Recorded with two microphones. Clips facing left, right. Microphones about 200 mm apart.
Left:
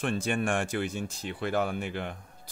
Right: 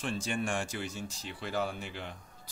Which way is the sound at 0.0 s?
55° left (ahead or behind).